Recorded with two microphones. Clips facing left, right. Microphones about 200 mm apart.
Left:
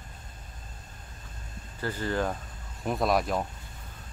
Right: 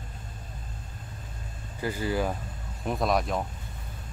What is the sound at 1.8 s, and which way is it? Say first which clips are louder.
Speech: right 1 dB; 10° right (ahead or behind).